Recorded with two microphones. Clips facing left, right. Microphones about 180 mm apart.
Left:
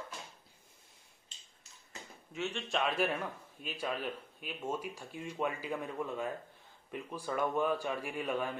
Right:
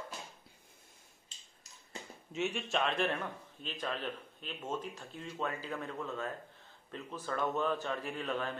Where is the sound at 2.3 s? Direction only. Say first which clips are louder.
Right 2 dB; 15° right (ahead or behind).